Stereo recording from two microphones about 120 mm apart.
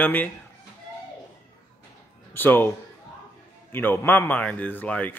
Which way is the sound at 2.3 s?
15° left (ahead or behind).